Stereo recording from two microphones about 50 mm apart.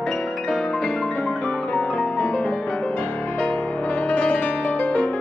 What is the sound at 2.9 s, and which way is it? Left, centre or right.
Music, left.